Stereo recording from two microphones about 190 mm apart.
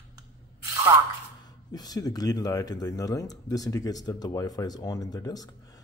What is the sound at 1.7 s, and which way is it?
Speech, 20° left (ahead or behind).